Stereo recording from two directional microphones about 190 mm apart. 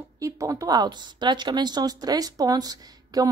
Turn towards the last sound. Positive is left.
turn(degrees=-20)  # may be behind; listen again after turning